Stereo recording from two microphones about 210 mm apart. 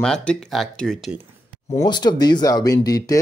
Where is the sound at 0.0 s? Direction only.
5° left (ahead or behind).